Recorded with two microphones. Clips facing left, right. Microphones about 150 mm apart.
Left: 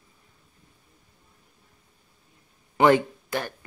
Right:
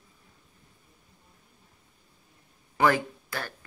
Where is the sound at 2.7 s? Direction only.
20° left (ahead or behind).